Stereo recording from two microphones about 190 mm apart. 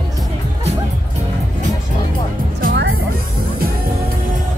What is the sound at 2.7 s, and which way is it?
Music, 85° right.